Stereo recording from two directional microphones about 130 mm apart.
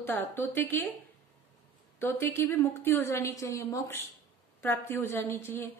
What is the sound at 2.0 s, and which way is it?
A woman's voice, 20° left (ahead or behind).